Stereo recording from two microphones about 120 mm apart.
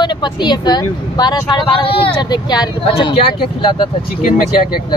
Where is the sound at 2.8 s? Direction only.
50° left (ahead or behind).